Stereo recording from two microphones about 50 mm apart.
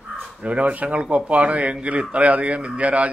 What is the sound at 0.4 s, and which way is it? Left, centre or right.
A man's voice, right.